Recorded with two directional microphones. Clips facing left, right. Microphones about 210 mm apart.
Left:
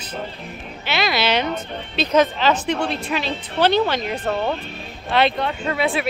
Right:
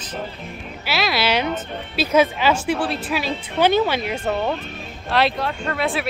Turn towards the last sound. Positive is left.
turn(degrees=0)  # may be behind; listen again after turning